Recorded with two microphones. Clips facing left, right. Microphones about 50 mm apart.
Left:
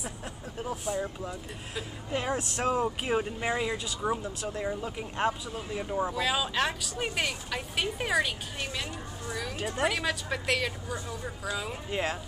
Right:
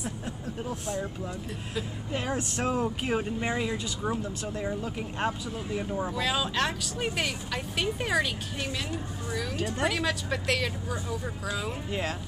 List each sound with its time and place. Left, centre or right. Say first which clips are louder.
0.8 s speech: left 1 dB; centre